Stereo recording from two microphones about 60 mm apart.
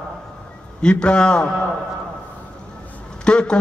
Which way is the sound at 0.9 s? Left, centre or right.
Centre.